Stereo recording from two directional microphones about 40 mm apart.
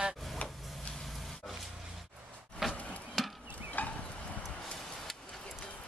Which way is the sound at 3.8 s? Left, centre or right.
Left.